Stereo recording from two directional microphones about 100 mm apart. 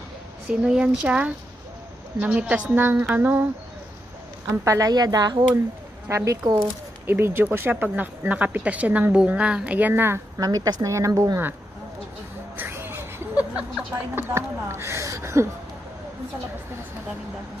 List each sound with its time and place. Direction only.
0.5 s a woman's voice: 10° right (ahead or behind)
4.5 s speech: 30° right (ahead or behind)
6.0 s a woman's voice: 30° right (ahead or behind)
10.4 s a woman's voice: 40° right (ahead or behind)
12.5 s a sound: 20° right (ahead or behind)
14.1 s speech: 25° right (ahead or behind)